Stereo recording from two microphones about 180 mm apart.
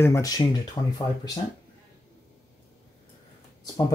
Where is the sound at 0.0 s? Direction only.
15° left (ahead or behind).